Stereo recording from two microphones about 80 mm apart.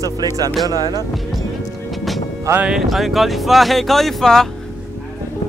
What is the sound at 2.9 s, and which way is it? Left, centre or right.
Speech, centre.